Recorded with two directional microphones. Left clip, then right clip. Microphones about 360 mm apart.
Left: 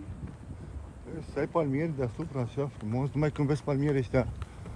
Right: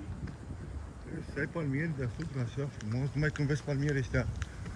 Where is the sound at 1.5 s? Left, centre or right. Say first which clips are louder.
Left 7 dB; centre.